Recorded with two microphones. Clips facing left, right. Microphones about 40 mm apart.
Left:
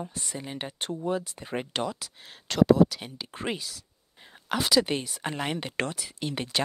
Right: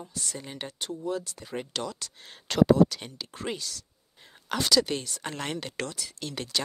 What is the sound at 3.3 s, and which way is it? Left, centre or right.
Speech, centre.